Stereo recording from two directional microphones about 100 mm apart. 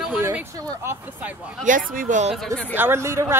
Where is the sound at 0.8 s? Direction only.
15° right (ahead or behind).